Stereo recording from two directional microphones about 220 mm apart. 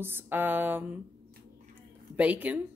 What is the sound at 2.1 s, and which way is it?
Speech, 5° right (ahead or behind).